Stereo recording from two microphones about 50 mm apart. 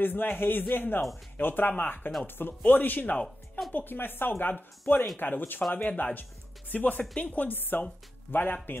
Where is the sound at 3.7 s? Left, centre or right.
Left.